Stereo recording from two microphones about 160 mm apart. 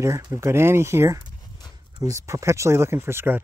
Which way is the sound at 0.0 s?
20° right (ahead or behind).